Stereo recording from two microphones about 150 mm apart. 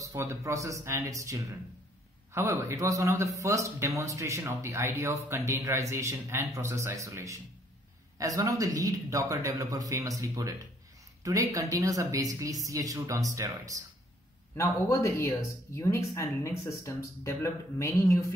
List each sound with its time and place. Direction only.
0.0 s speech: 20° right (ahead or behind)
14.5 s speech: 20° left (ahead or behind)